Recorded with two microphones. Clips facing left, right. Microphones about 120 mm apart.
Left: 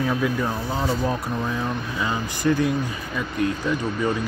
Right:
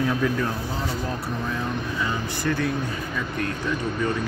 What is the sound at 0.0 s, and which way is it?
Speech, 5° left (ahead or behind).